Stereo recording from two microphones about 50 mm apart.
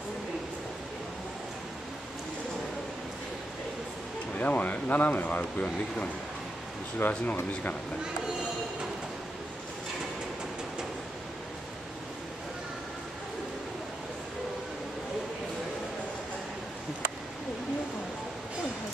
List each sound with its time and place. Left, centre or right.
4.4 s speech: left